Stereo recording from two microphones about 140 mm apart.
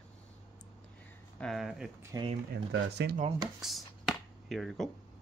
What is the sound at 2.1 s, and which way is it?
Speech, 25° right (ahead or behind).